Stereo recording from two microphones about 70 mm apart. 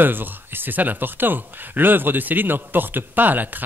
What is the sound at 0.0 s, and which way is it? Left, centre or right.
Speech, right.